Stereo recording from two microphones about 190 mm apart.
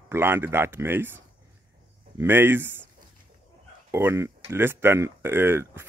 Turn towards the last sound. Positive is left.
turn(degrees=-15)  # may be behind; listen again after turning